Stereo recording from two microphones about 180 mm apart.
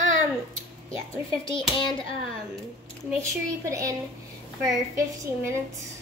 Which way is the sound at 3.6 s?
20° right (ahead or behind).